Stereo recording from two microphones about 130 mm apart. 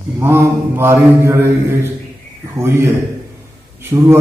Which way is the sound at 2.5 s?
20° right (ahead or behind).